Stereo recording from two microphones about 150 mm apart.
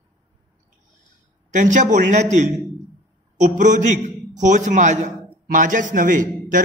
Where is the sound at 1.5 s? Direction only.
55° right (ahead or behind).